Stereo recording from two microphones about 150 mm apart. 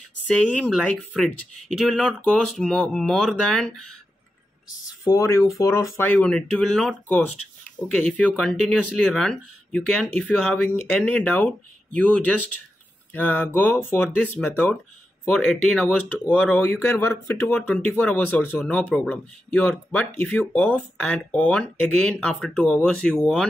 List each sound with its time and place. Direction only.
0.3 s speech: 5° left (ahead or behind)
4.6 s speech: 25° left (ahead or behind)
5.9 s speech: 10° left (ahead or behind)